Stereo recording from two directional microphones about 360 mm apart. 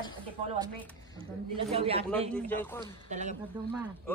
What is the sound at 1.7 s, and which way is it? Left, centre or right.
Speech, centre.